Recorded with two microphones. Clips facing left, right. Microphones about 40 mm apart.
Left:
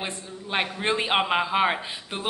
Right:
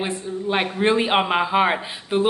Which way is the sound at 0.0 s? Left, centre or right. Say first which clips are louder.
Right 9 dB; centre.